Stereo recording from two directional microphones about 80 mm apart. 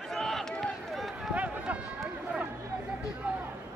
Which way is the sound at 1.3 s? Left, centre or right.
Centre.